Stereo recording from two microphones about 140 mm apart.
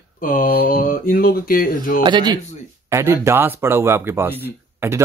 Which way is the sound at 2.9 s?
20° right (ahead or behind).